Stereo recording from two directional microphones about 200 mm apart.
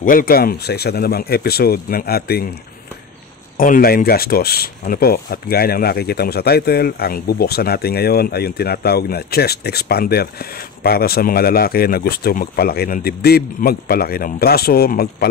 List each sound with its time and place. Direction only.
0.0 s speech: 45° left (ahead or behind)
3.5 s speech: 45° left (ahead or behind)